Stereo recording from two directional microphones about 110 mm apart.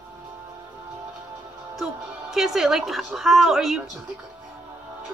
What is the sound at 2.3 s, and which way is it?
A woman's voice, 5° right (ahead or behind).